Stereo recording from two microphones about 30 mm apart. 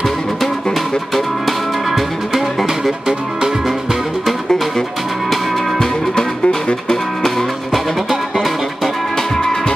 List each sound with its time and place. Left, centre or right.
1.9 s music: centre
6.1 s music: left
7.2 s music: centre